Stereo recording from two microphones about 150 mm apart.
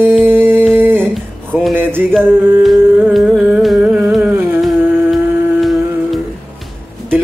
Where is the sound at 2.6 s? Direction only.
Centre (ahead or behind).